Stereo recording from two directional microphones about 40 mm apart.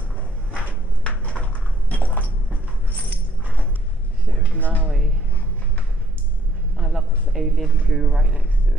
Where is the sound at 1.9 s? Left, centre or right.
Left.